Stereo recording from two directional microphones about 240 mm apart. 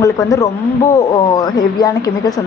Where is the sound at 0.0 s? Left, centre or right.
Centre.